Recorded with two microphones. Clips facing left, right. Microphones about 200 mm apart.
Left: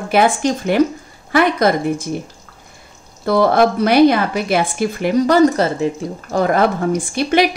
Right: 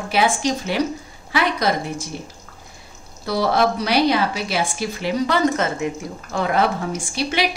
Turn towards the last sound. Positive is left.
turn(degrees=50)  # may be behind; listen again after turning